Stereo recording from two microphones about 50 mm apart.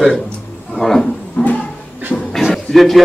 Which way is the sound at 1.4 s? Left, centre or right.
Left.